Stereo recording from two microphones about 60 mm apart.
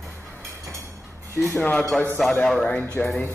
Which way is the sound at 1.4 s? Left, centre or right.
Left.